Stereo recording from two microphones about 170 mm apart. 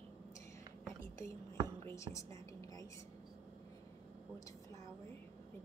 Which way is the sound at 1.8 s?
15° left (ahead or behind).